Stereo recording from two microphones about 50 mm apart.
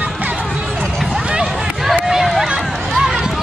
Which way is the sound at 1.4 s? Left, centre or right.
Centre.